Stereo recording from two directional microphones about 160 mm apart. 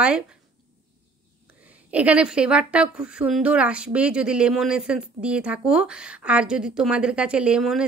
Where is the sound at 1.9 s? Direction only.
10° right (ahead or behind).